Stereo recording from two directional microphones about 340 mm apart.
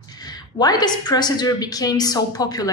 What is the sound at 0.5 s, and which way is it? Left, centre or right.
A woman's voice, centre.